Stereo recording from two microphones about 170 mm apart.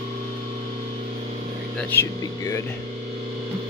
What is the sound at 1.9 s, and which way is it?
Speech, 15° left (ahead or behind).